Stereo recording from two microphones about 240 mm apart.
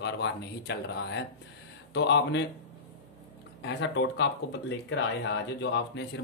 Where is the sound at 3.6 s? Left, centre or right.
Left.